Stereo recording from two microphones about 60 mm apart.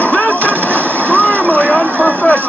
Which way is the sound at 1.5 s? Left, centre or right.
Left.